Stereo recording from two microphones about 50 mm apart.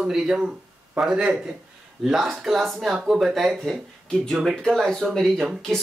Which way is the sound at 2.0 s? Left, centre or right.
Centre.